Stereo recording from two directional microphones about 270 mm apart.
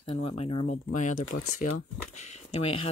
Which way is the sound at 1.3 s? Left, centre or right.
Left.